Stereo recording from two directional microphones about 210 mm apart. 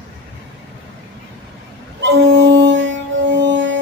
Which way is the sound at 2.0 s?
55° right (ahead or behind).